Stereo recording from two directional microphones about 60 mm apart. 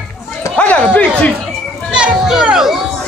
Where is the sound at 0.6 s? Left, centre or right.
Left.